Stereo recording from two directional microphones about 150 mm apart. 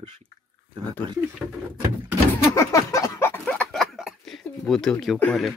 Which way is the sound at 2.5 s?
20° left (ahead or behind).